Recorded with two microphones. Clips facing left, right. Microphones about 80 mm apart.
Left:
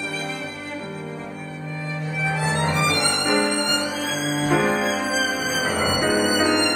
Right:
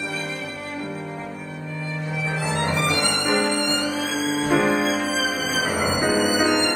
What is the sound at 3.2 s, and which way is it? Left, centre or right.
Music, centre.